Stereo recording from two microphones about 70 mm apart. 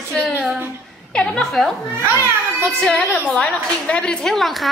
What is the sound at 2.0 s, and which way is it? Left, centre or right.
Speech, right.